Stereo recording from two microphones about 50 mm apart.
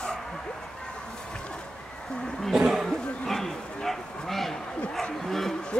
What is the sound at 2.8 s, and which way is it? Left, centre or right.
Speech, centre.